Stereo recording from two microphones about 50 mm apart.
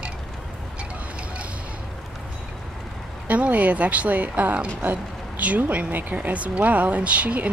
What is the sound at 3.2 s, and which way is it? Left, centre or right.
Speech, right.